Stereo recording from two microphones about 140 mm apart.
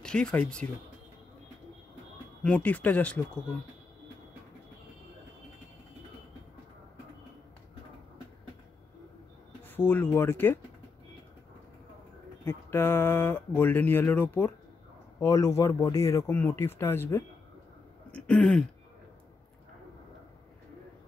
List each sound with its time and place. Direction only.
0.0 s speech: 5° left (ahead or behind)
2.4 s speech: 10° left (ahead or behind)
9.7 s speech: 15° left (ahead or behind)
12.4 s speech: 15° left (ahead or behind)
18.1 s a sound: 10° left (ahead or behind)